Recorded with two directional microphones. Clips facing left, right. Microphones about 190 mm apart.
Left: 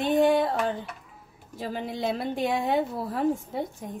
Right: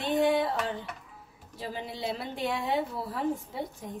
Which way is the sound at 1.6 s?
45° left (ahead or behind).